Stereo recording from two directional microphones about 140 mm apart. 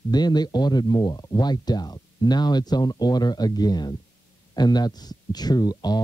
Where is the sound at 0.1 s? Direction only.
30° left (ahead or behind).